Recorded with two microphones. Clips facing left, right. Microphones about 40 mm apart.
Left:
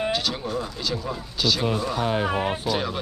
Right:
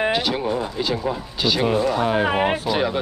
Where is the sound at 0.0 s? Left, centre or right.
Right.